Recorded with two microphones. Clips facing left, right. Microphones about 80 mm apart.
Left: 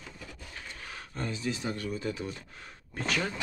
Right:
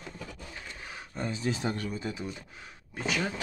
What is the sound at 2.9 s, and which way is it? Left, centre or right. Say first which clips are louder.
Speech: even; centre.